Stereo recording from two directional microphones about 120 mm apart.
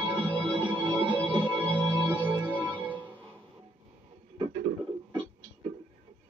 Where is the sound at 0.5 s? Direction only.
40° right (ahead or behind).